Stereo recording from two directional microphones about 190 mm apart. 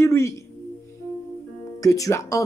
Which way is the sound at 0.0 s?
15° left (ahead or behind).